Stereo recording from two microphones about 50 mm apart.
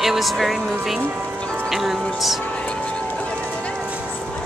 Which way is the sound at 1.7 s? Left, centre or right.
Centre.